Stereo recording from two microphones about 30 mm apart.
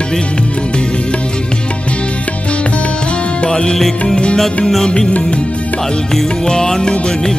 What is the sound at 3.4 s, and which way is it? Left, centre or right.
Music, left.